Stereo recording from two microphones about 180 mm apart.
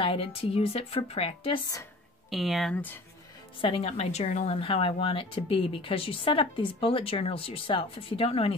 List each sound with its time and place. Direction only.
0.0 s speech: 30° left (ahead or behind)
2.3 s speech: centre (ahead or behind)
3.6 s speech: 35° left (ahead or behind)